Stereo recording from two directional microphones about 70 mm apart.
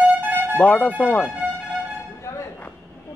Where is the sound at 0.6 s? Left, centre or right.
Centre.